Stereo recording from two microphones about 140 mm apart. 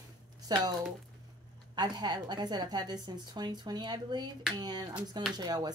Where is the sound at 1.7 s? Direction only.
30° right (ahead or behind).